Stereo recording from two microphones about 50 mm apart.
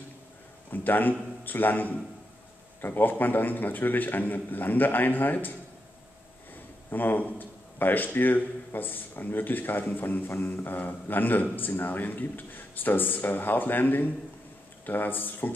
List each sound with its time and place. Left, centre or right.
0.7 s a man's voice: left
6.9 s a man's voice: left